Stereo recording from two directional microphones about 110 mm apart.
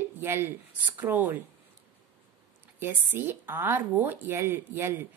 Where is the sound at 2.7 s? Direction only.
20° right (ahead or behind).